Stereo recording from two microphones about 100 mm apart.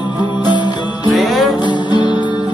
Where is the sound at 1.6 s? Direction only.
50° left (ahead or behind).